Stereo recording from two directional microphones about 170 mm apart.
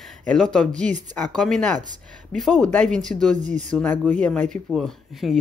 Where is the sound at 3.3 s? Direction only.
45° right (ahead or behind).